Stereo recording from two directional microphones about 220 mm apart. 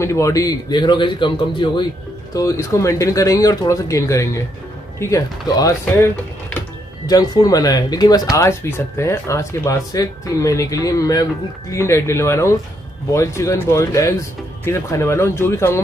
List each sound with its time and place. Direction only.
0.0 s a man's voice: 15° left (ahead or behind)
7.1 s speech: 15° left (ahead or behind)